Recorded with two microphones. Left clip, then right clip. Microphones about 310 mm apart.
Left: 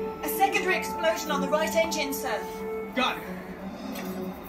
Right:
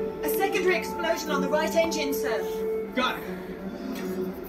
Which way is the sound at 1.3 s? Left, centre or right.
Centre.